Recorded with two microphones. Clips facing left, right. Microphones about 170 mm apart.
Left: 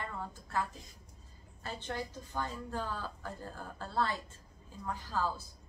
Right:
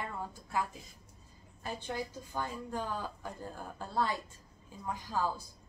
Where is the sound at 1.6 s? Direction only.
10° right (ahead or behind).